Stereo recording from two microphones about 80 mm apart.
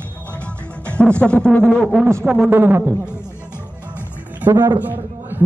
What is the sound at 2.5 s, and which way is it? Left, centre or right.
Speech, right.